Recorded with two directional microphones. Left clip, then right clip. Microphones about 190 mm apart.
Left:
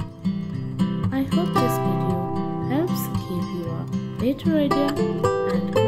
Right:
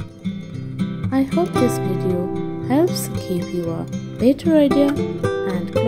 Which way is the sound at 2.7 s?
30° right (ahead or behind).